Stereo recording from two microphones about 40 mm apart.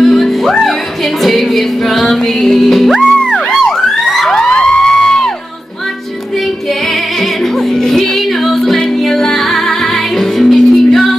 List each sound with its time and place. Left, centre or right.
0.0 s music: centre
4.0 s emergency vehicle: centre
4.4 s a sound: centre
6.9 s music: centre